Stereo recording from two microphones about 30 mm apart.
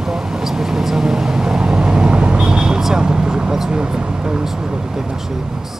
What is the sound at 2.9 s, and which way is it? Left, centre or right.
Speech, right.